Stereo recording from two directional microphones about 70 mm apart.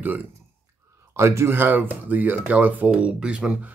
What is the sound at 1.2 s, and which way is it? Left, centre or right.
Speech, right.